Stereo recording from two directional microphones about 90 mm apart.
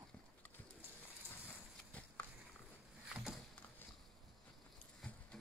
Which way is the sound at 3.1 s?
5° right (ahead or behind).